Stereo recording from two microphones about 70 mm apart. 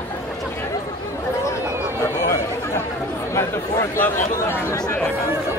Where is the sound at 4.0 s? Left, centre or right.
Left.